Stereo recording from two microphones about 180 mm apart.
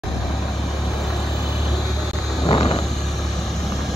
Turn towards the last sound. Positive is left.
turn(degrees=30)  # may be behind; listen again after turning